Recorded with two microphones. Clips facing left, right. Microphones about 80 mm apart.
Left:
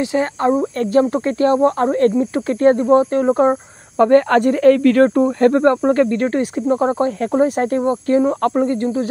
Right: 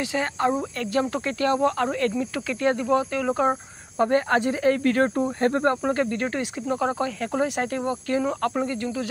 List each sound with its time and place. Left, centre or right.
0.0 s speech: left
4.0 s speech: left